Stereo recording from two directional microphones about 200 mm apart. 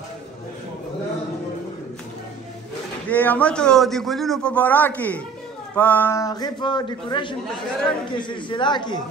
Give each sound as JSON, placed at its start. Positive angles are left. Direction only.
{"t": 3.1, "sound": "a man's voice", "side_deg": 10}